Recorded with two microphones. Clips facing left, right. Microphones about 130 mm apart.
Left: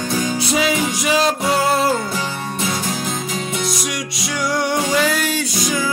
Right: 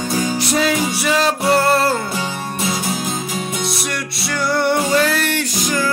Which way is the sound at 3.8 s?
15° left (ahead or behind).